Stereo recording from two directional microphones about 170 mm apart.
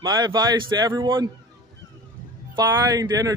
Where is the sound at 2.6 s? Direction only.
20° right (ahead or behind).